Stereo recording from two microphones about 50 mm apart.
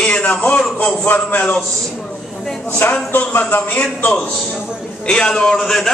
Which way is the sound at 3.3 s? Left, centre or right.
Left.